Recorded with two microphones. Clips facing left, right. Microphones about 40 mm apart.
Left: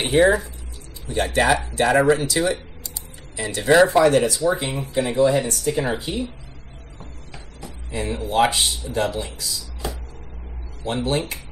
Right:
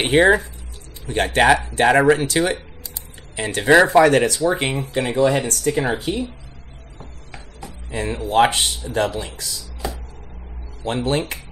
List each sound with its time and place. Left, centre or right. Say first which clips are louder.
0.0 s speech: right 2 dB; right
4.0 s speech: right 2 dB; right
7.3 s speech: right 2 dB; right
10.8 s speech: right 2 dB; right